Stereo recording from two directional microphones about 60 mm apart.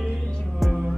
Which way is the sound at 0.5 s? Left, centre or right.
Centre.